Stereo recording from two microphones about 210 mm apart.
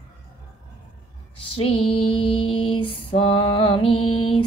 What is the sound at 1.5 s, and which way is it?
Female singing, 25° left (ahead or behind).